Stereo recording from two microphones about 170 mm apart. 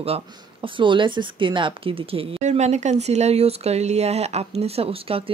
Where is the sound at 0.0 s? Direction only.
30° right (ahead or behind).